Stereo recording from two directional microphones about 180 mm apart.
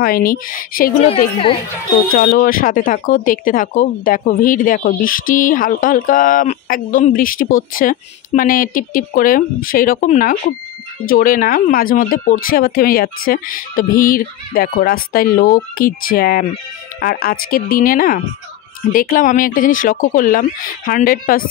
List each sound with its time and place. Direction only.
0.0 s speech: 55° left (ahead or behind)
1.0 s a woman's voice: 30° left (ahead or behind)
2.1 s speech: 50° left (ahead or behind)